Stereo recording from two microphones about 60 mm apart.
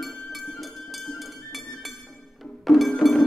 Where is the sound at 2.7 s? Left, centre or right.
Centre.